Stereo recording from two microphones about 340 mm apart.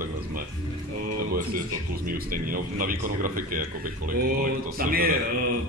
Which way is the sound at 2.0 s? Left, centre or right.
Right.